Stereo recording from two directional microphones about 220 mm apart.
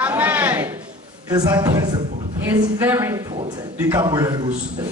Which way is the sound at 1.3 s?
15° right (ahead or behind).